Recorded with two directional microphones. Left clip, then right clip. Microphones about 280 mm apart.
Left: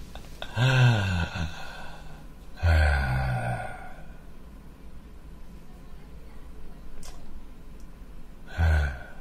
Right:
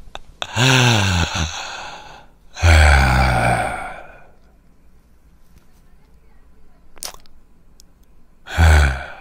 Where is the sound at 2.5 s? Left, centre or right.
Right.